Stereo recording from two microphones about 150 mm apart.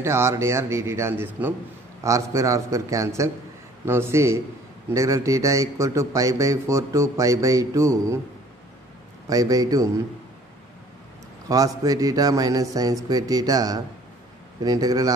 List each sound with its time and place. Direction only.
0.0 s a man's voice: 15° right (ahead or behind)
9.3 s a man's voice: 20° right (ahead or behind)
11.4 s a man's voice: 25° right (ahead or behind)